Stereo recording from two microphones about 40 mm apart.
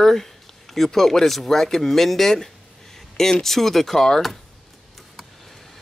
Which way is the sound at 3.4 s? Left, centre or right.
Centre.